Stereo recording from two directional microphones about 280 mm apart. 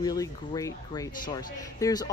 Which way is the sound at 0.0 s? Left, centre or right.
Centre.